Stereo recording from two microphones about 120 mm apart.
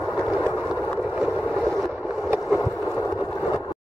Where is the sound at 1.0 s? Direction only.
15° right (ahead or behind).